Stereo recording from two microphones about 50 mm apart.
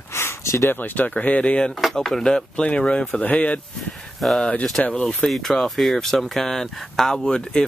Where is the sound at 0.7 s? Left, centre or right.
Left.